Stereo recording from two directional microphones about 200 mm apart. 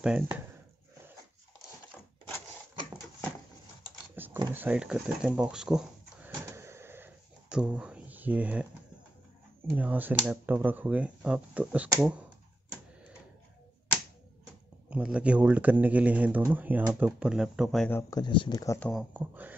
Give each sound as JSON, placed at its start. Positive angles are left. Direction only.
{"t": 0.0, "sound": "speech", "side_deg": -5}
{"t": 4.1, "sound": "a sound", "side_deg": -10}
{"t": 4.6, "sound": "speech", "side_deg": -5}
{"t": 6.5, "sound": "a sound", "side_deg": -10}
{"t": 9.7, "sound": "speech", "side_deg": -10}
{"t": 14.9, "sound": "speech", "side_deg": -5}
{"t": 18.1, "sound": "speech", "side_deg": 25}
{"t": 18.8, "sound": "speech", "side_deg": 5}
{"t": 19.1, "sound": "speech", "side_deg": -10}